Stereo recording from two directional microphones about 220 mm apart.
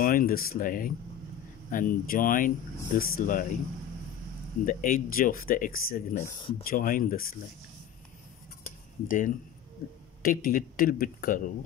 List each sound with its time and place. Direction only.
0.0 s speech: 40° left (ahead or behind)
4.6 s speech: 40° left (ahead or behind)
8.6 s cutlery: 35° left (ahead or behind)
10.2 s speech: 40° left (ahead or behind)